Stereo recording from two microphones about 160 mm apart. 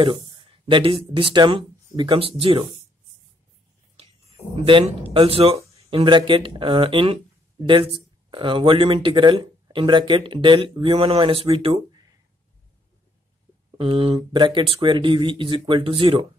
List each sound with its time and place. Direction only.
0.7 s speech: 30° right (ahead or behind)
4.6 s speech: 35° right (ahead or behind)
13.7 s speech: 35° right (ahead or behind)